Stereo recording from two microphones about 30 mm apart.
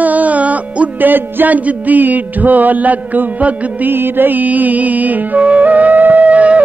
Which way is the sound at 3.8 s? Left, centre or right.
Right.